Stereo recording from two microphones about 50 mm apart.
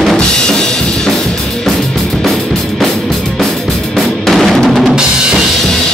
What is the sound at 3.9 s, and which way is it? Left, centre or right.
Drum, centre.